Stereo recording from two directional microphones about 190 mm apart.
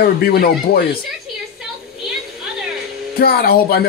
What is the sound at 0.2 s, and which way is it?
Speech, 55° left (ahead or behind).